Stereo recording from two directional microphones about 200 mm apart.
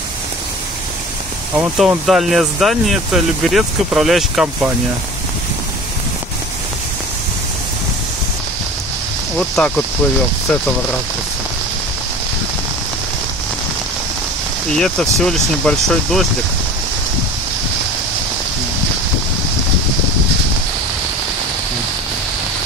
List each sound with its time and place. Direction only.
1.5 s speech: 5° right (ahead or behind)
9.6 s speech: centre (ahead or behind)
14.8 s speech: centre (ahead or behind)